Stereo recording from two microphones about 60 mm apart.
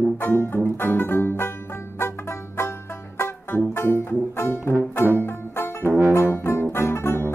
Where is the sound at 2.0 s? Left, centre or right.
Left.